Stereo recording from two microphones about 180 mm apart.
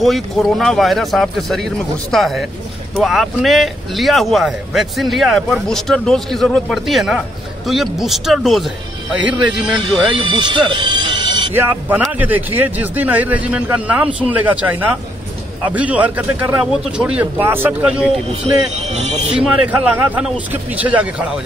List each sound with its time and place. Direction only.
0.0 s a man's voice: centre (ahead or behind)
10.1 s speech: 25° right (ahead or behind)
11.5 s a man's voice: 10° right (ahead or behind)
18.3 s speech: 35° right (ahead or behind)
19.3 s a man's voice: 5° right (ahead or behind)